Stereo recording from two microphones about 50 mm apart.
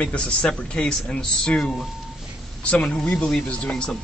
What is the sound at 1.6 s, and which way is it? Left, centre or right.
Speech, centre.